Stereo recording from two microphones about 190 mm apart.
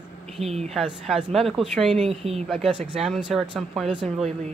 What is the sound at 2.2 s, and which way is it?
Speech, 35° right (ahead or behind).